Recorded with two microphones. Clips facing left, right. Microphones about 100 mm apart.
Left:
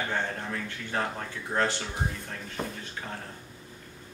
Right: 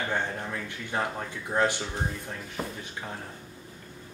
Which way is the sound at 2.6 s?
Centre (ahead or behind).